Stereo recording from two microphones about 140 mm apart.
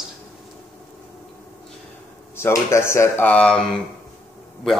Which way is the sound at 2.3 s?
20° left (ahead or behind).